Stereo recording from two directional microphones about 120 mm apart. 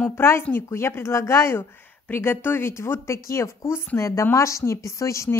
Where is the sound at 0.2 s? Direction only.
20° left (ahead or behind).